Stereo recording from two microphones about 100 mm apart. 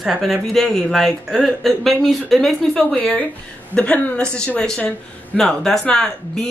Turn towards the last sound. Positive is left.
turn(degrees=5)  # may be behind; listen again after turning